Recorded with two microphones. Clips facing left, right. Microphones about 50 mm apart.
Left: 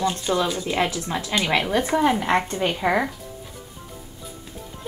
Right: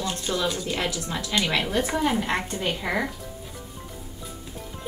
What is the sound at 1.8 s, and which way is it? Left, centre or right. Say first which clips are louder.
A woman's voice: left 4 dB; centre.